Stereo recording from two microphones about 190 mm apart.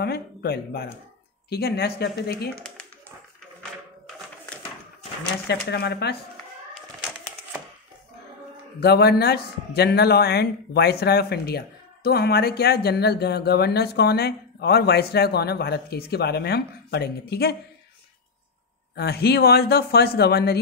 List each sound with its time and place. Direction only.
0.0 s a man's voice: 55° left (ahead or behind)
2.5 s speech: 5° left (ahead or behind)
5.5 s a man's voice: 60° left (ahead or behind)
8.7 s a man's voice: 60° left (ahead or behind)
18.9 s a man's voice: 55° left (ahead or behind)